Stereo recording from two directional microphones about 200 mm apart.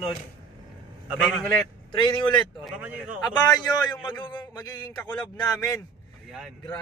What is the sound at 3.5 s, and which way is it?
A man's voice, 20° left (ahead or behind).